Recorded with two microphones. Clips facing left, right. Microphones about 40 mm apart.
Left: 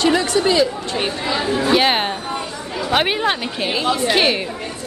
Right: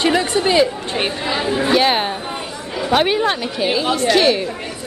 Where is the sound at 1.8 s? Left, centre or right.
Centre.